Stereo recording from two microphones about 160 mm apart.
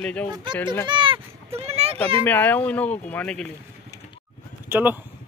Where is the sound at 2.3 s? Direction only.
10° left (ahead or behind).